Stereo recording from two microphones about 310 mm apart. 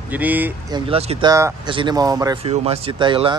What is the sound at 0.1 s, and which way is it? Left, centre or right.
Speech, centre.